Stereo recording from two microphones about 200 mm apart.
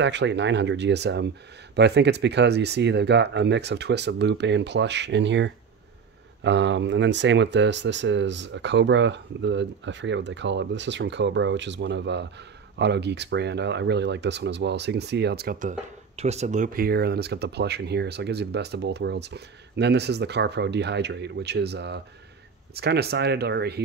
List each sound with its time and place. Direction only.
0.0 s speech: 60° right (ahead or behind)
16.2 s speech: 35° right (ahead or behind); by 23.8 s 55° right (ahead or behind)